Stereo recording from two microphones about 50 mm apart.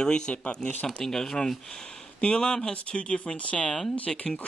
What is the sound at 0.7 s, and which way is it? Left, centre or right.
Speech, left.